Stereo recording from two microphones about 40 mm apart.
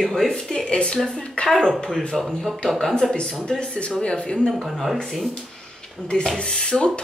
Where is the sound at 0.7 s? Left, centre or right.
Left.